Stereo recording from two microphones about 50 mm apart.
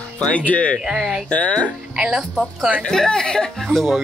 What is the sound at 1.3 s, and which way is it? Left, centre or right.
Speech, left.